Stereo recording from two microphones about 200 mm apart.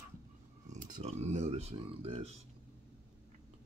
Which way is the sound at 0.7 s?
40° right (ahead or behind).